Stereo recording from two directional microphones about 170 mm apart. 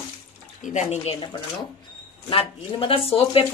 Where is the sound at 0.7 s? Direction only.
35° left (ahead or behind).